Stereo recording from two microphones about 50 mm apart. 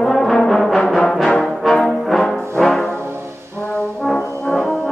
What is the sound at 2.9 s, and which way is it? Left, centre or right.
Music, right.